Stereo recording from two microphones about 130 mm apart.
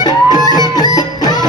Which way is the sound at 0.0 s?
30° left (ahead or behind).